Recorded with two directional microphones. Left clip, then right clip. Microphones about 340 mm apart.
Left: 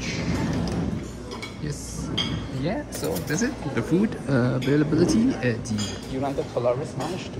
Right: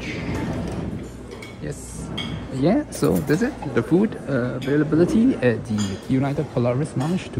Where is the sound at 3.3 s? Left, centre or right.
Centre.